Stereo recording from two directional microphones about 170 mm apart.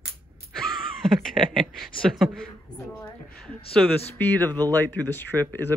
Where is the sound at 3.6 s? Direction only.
35° left (ahead or behind).